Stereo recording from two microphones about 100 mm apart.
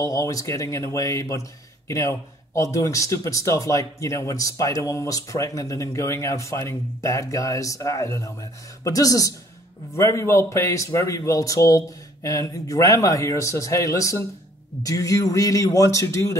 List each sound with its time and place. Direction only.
0.0 s speech: 35° left (ahead or behind)